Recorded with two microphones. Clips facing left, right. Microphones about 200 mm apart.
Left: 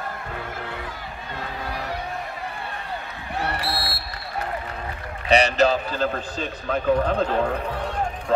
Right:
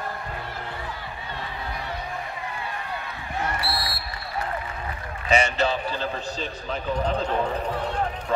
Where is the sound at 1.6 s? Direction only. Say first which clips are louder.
Left 4 dB; 70° left (ahead or behind).